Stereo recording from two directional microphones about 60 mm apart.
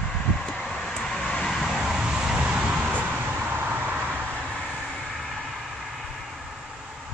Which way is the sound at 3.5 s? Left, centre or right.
Right.